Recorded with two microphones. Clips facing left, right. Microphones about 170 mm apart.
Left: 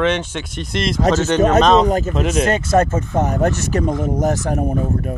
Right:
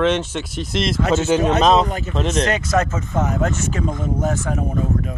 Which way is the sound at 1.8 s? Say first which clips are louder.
Left 8 dB; 45° left (ahead or behind).